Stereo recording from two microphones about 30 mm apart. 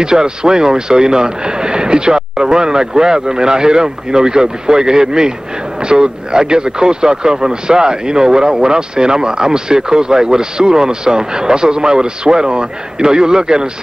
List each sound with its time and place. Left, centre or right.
0.0 s speech: right